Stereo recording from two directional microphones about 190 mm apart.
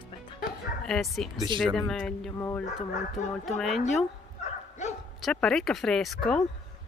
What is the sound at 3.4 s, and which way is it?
Speech, centre (ahead or behind).